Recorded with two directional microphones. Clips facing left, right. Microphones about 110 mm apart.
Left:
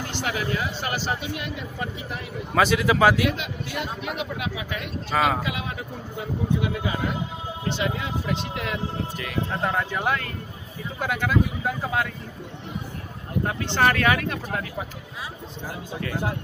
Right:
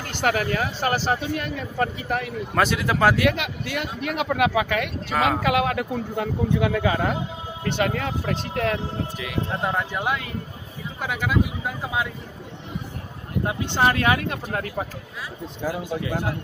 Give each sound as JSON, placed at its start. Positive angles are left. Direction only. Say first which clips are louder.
{"t": 0.2, "sound": "speech", "louder": "right 6 dB", "side_deg": -50}
{"t": 2.5, "sound": "speech", "louder": "left 2 dB", "side_deg": 0}
{"t": 3.2, "sound": "a man's voice", "louder": "right 3 dB", "side_deg": -75}
{"t": 5.1, "sound": "speech", "louder": "even", "side_deg": 0}
{"t": 5.4, "sound": "a man's voice", "louder": "right 9 dB", "side_deg": -70}
{"t": 7.7, "sound": "speech", "louder": "right 5 dB", "side_deg": -55}
{"t": 9.2, "sound": "speech", "louder": "even", "side_deg": -5}
{"t": 13.5, "sound": "speech", "louder": "right 1 dB", "side_deg": -20}
{"t": 14.5, "sound": "speech", "louder": "right 3 dB", "side_deg": -40}